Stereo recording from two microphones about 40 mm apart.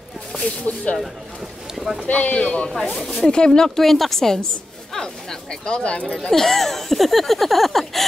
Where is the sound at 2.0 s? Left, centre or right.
Left; by 3.9 s centre.